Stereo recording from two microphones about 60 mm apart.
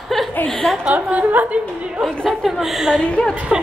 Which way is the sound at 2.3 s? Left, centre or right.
Centre.